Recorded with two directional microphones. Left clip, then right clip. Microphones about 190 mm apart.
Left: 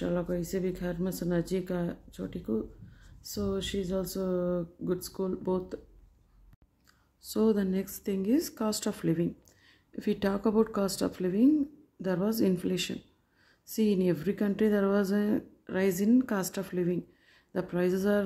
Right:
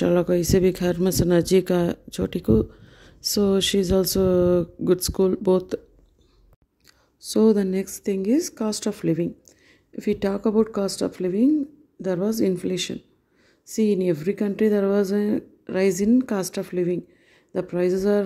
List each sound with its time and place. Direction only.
0.0 s speech: 55° right (ahead or behind)
7.2 s speech: 30° right (ahead or behind)